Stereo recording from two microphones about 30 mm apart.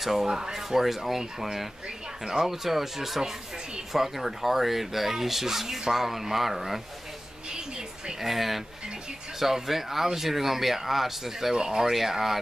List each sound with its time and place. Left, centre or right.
0.0 s speech: centre
0.3 s speech: centre
7.5 s a sound: right
8.2 s speech: centre
11.5 s speech: right
11.9 s speech: centre